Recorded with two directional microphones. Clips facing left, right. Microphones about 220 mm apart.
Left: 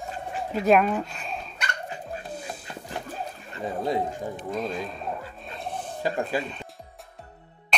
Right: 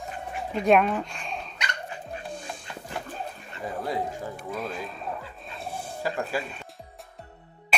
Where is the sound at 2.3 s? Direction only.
5° left (ahead or behind).